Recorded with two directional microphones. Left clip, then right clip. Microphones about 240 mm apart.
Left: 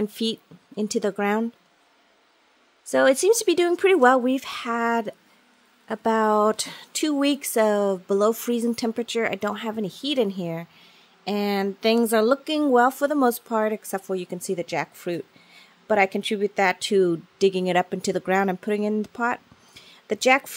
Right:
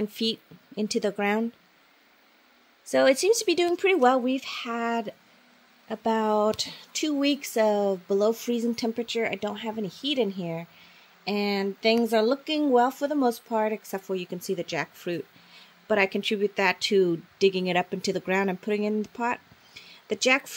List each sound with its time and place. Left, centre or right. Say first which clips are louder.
0.0 s speech: left 2 dB; centre
2.9 s speech: left 3 dB; centre